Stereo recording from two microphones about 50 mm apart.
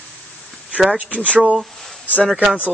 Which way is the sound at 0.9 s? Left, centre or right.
Right.